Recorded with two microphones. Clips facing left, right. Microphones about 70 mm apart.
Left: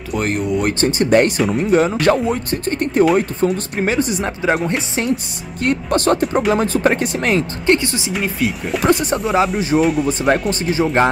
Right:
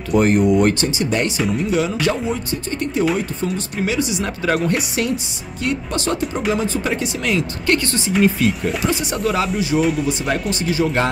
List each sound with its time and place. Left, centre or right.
0.1 s speech: centre
0.7 s speech: left
4.2 s speech: left
5.6 s speech: left
7.6 s speech: left
7.9 s speech: centre
9.1 s speech: left
9.8 s speech: centre
10.0 s speech: left
10.5 s speech: left